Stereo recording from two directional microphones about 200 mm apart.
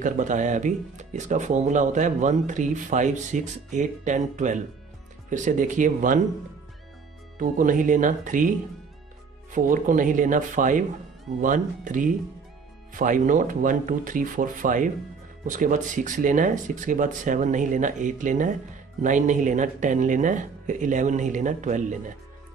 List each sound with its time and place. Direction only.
0.0 s speech: 40° right (ahead or behind)
7.3 s speech: 40° right (ahead or behind)